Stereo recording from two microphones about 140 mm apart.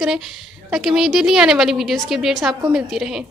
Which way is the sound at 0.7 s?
5° right (ahead or behind).